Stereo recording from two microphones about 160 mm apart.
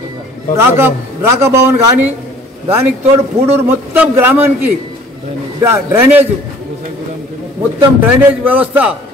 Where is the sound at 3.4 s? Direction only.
15° right (ahead or behind).